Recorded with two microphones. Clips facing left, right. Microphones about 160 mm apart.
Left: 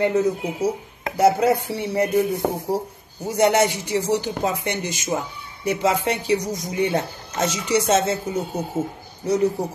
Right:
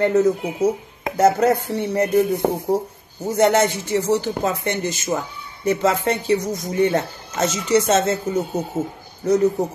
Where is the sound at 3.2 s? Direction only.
10° left (ahead or behind).